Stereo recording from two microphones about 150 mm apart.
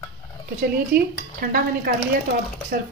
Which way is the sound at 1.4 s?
85° right.